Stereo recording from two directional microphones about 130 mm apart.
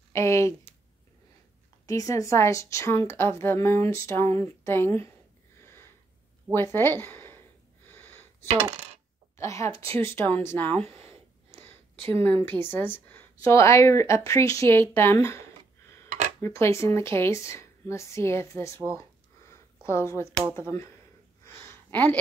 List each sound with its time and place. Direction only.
0.1 s a woman's voice: 20° left (ahead or behind)
1.9 s a woman's voice: 25° left (ahead or behind)
6.5 s speech: 15° left (ahead or behind)
7.9 s a sound: 15° left (ahead or behind)
9.4 s a woman's voice: 20° left (ahead or behind)
9.8 s speech: 45° right (ahead or behind)
10.1 s a woman's voice: 15° left (ahead or behind)
10.8 s speech: 50° right (ahead or behind)
12.2 s a woman's voice: 20° left (ahead or behind)
19.5 s a sound: 20° left (ahead or behind)
20.5 s a woman's voice: 20° left (ahead or behind)
21.5 s a sound: 15° left (ahead or behind)